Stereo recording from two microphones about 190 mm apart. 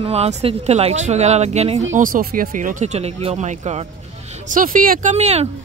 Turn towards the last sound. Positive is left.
turn(degrees=-35)  # may be behind; listen again after turning